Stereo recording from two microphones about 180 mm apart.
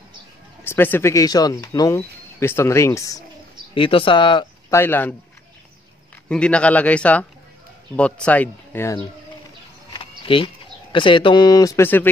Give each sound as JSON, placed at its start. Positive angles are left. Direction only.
{"t": 0.7, "sound": "speech", "side_deg": 10}
{"t": 3.7, "sound": "speech", "side_deg": 30}
{"t": 4.7, "sound": "speech", "side_deg": 10}
{"t": 6.2, "sound": "speech", "side_deg": 5}
{"t": 9.9, "sound": "speech", "side_deg": 30}